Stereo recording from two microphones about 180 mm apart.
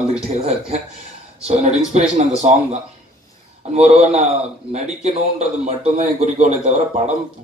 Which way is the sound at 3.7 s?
35° right (ahead or behind).